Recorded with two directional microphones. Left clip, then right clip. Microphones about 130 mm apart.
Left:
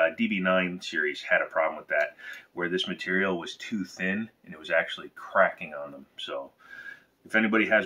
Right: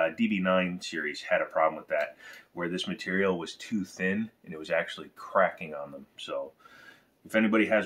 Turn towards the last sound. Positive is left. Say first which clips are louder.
# left 2 dB
turn(degrees=-35)  # may be behind; listen again after turning